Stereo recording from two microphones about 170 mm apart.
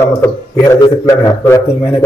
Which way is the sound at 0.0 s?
15° left (ahead or behind).